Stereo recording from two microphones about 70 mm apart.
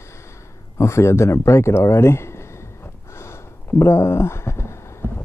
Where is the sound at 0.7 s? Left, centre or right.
Left.